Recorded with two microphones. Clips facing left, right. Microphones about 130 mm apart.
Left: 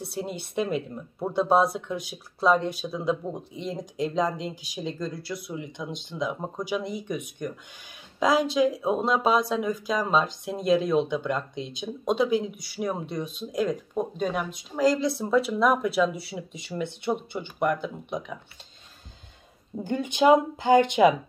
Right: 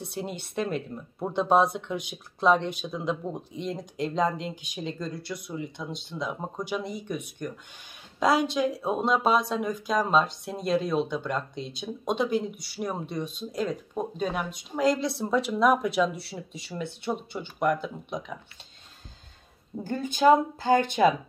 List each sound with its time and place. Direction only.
0.0 s speech: 5° left (ahead or behind)
8.2 s speech: centre (ahead or behind)
16.2 s speech: 10° left (ahead or behind)
19.8 s speech: 20° left (ahead or behind)